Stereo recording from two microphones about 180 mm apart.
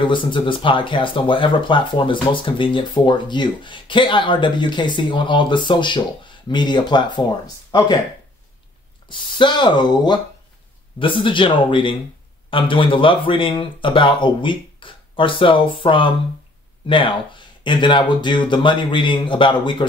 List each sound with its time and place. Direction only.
0.0 s speech: 25° left (ahead or behind)
9.4 s speech: 25° left (ahead or behind)